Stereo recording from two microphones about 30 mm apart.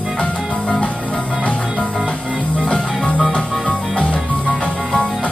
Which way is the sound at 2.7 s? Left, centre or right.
Left.